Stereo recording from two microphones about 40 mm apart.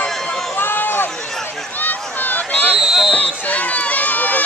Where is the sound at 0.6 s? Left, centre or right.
Left.